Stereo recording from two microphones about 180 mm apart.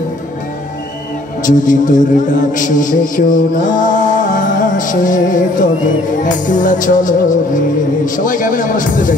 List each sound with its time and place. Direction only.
1.4 s a man's voice: 45° left (ahead or behind)
6.2 s music: 45° left (ahead or behind)